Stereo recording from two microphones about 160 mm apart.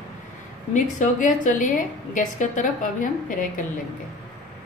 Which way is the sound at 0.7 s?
55° left (ahead or behind).